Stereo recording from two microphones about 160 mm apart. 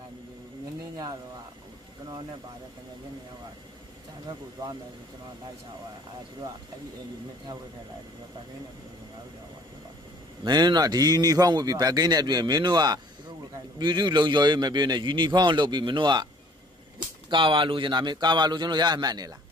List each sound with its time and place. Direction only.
10.4 s speech: 25° right (ahead or behind)
17.3 s speech: 30° right (ahead or behind)